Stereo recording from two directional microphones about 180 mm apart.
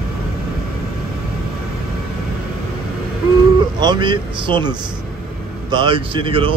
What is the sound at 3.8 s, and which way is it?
Speech, 25° right (ahead or behind).